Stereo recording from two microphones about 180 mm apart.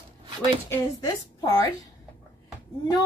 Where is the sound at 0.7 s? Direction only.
20° left (ahead or behind).